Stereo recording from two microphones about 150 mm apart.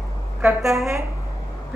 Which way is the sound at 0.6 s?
Centre (ahead or behind).